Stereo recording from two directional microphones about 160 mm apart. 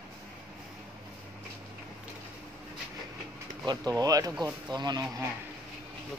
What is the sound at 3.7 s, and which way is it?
Speech, 25° right (ahead or behind).